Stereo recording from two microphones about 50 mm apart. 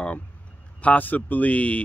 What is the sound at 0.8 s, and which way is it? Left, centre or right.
Speech, left.